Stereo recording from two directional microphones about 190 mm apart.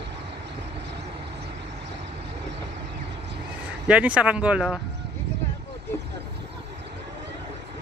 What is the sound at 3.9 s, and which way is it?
Speech, 5° right (ahead or behind).